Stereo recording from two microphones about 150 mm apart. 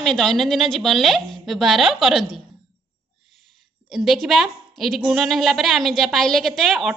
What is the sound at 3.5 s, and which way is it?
A woman's voice, centre (ahead or behind).